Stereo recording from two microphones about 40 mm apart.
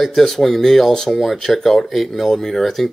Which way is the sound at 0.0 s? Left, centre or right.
Centre.